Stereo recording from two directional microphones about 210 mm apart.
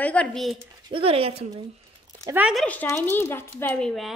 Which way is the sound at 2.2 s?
5° right (ahead or behind).